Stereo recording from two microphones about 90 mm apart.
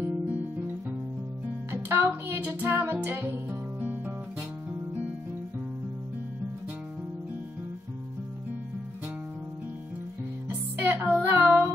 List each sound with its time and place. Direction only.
0.0 s guitar: 20° right (ahead or behind)
1.7 s music: 25° right (ahead or behind)
10.5 s music: 20° right (ahead or behind)